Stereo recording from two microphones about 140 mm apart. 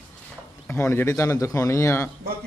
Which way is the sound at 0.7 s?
20° left (ahead or behind).